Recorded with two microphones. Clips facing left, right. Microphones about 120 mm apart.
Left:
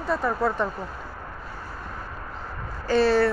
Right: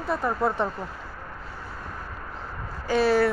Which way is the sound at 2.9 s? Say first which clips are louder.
Left 1 dB; 10° right (ahead or behind).